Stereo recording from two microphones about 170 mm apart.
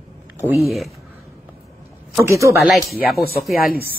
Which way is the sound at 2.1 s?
15° right (ahead or behind).